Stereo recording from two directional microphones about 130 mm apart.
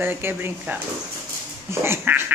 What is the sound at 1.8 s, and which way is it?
Duck, 15° right (ahead or behind).